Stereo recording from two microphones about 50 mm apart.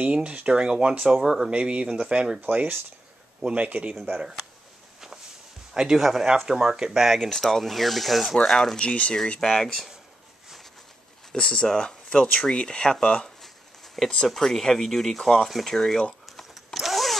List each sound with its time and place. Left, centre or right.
0.0 s speech: right
1.5 s speech: right
2.4 s speech: right
3.4 s speech: right
5.8 s speech: centre
7.2 s speech: centre
8.7 s speech: left
9.3 s speech: centre
11.3 s speech: centre
16.3 s vehicle: centre